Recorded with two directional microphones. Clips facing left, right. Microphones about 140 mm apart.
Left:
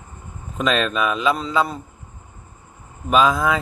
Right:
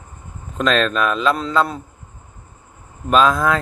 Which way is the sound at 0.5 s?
5° left (ahead or behind).